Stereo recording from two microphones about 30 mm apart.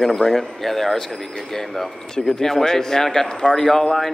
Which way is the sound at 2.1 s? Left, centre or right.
Centre.